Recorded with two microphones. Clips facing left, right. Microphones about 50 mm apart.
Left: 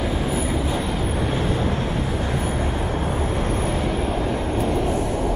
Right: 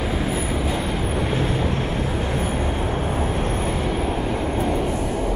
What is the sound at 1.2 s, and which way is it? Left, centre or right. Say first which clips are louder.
Vehicle: even; centre.